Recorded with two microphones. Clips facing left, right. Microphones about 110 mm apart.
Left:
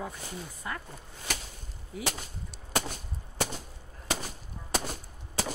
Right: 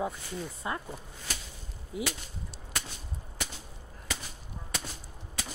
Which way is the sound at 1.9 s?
20° right (ahead or behind).